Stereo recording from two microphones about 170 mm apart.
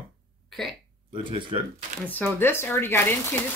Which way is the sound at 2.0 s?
10° left (ahead or behind).